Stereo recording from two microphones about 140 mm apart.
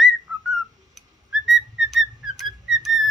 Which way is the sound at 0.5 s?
Centre (ahead or behind).